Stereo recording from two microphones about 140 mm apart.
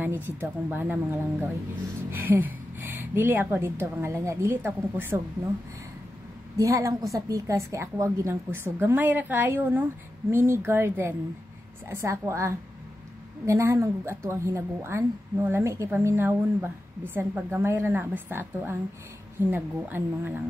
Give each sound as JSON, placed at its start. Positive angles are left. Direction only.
{"t": 0.4, "sound": "a woman's voice", "side_deg": -15}
{"t": 6.5, "sound": "a woman's voice", "side_deg": -20}